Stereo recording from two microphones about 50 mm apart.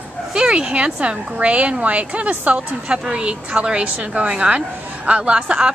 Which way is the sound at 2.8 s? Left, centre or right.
Centre.